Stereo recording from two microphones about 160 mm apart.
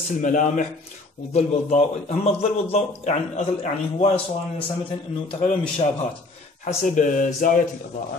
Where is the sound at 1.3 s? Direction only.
40° left (ahead or behind).